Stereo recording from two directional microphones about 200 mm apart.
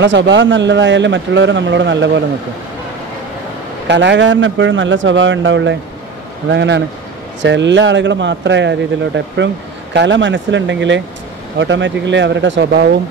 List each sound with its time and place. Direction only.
0.0 s a man's voice: 65° right (ahead or behind)
3.8 s a man's voice: 60° right (ahead or behind)